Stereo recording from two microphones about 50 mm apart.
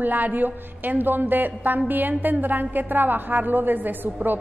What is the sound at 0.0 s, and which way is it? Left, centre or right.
A woman's voice, right.